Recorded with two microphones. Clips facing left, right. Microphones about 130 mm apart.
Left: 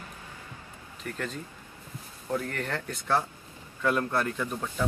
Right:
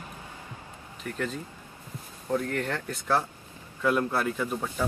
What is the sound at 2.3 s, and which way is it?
Speech, centre (ahead or behind).